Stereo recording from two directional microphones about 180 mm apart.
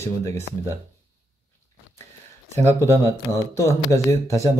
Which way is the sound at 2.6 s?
15° left (ahead or behind).